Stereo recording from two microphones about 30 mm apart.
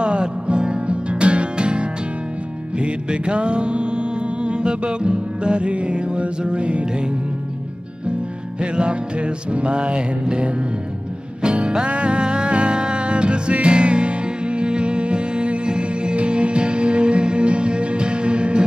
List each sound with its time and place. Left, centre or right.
0.0 s music: right
8.5 s music: right
11.8 s music: right